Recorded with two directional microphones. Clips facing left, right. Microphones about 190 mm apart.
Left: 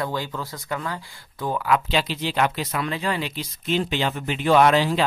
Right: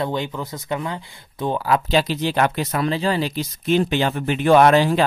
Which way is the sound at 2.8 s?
30° right (ahead or behind).